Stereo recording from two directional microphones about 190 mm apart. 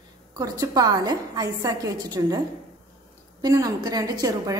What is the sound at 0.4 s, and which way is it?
A woman's voice, 20° right (ahead or behind).